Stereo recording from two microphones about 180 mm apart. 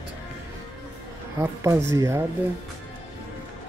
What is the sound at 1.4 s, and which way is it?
Speech, 15° right (ahead or behind).